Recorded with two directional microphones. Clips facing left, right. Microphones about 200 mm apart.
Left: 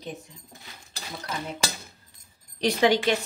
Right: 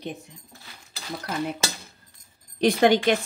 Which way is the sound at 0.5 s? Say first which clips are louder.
Left 1 dB; 15° left (ahead or behind).